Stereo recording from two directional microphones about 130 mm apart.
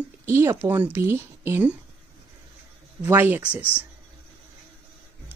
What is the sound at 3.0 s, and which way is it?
Speech, 15° right (ahead or behind).